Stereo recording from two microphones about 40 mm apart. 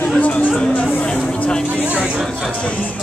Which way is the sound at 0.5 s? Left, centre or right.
Left.